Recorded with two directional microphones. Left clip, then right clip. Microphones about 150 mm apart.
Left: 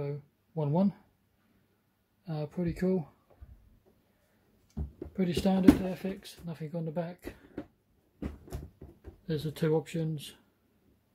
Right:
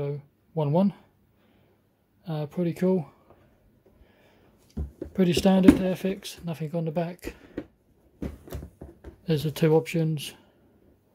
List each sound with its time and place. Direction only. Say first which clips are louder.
0.0 s a sound: right 6 dB; 25° right (ahead or behind)
2.2 s speech: right 6 dB; 25° right (ahead or behind)
5.1 s speech: right 8 dB; 55° right (ahead or behind)
9.2 s speech: right 8 dB; 50° right (ahead or behind)